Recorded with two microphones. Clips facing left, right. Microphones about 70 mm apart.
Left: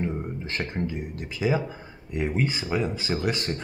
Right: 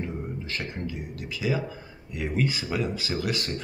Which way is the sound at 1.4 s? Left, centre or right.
Left.